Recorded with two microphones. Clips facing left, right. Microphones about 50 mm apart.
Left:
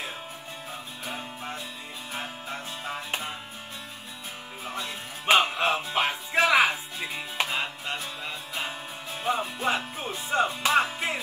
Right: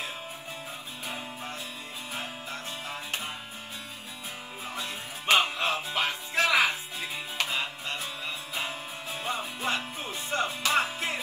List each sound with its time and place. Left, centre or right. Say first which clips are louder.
1.0 s music: left 1 dB; centre
5.2 s music: left 3 dB; centre
6.7 s music: left 2 dB; centre
8.0 s music: even; centre